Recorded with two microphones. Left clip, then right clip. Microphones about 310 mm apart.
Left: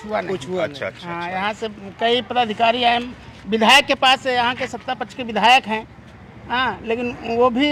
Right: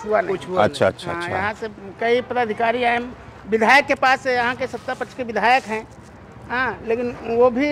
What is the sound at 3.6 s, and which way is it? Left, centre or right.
Speech, left.